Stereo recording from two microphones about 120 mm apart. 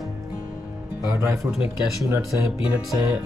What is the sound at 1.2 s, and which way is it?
Speech, 20° right (ahead or behind).